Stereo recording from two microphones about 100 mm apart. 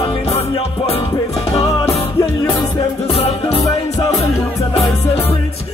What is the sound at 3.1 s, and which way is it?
Music, 80° left.